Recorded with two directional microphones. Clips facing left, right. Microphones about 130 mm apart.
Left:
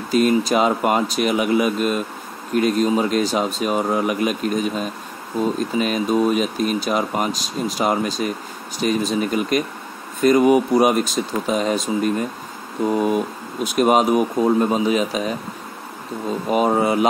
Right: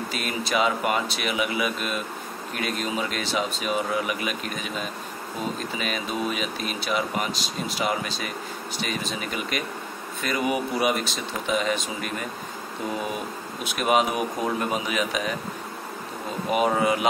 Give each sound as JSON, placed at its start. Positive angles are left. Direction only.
{"t": 0.1, "sound": "speech", "side_deg": 40}
{"t": 13.7, "sound": "speech", "side_deg": 40}
{"t": 16.4, "sound": "speech", "side_deg": 40}